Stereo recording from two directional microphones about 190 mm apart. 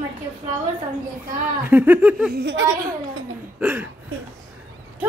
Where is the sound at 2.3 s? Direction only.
60° right (ahead or behind).